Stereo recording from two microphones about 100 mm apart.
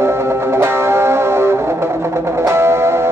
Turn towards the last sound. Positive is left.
turn(degrees=-25)  # may be behind; listen again after turning